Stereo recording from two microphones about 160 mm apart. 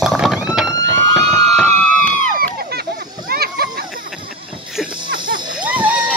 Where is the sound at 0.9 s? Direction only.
5° left (ahead or behind).